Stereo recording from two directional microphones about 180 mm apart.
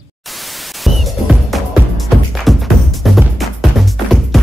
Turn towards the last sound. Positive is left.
turn(degrees=0)  # may be behind; listen again after turning